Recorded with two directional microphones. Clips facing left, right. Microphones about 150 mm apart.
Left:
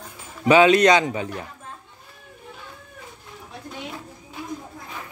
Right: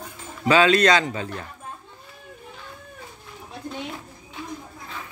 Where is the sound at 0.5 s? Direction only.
20° left (ahead or behind).